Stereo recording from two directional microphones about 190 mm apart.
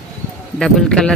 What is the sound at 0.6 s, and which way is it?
Speech, 5° left (ahead or behind).